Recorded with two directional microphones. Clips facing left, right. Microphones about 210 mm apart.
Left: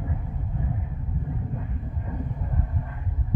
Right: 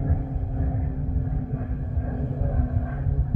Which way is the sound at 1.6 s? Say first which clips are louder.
Right 4 dB; 45° right (ahead or behind).